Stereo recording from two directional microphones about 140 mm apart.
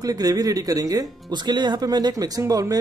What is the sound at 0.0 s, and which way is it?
Speech, 25° right (ahead or behind).